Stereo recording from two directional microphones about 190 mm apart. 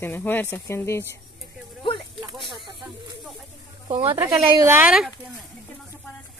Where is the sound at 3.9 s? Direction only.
30° right (ahead or behind).